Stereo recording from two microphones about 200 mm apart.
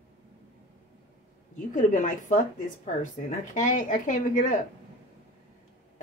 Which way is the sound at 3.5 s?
40° left (ahead or behind).